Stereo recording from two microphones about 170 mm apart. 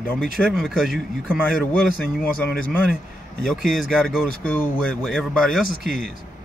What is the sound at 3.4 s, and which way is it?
Speech, centre (ahead or behind).